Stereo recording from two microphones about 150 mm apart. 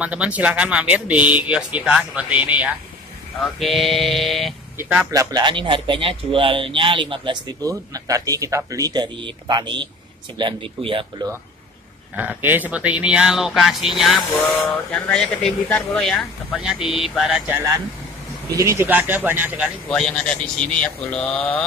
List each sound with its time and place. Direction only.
0.0 s speech: 10° right (ahead or behind)
4.7 s speech: 10° right (ahead or behind)
5.1 s speech: 25° right (ahead or behind)
12.2 s speech: 10° right (ahead or behind)
17.5 s speech: 15° right (ahead or behind)
19.9 s speech: 5° left (ahead or behind)
20.8 s mantra: 10° left (ahead or behind)